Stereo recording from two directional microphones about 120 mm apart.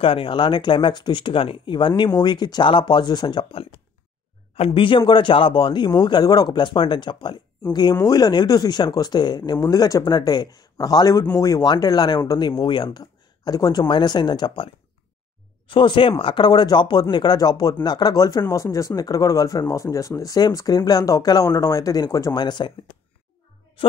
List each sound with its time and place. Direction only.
0.0 s a man's voice: 50° left (ahead or behind)
23.8 s speech: 50° left (ahead or behind)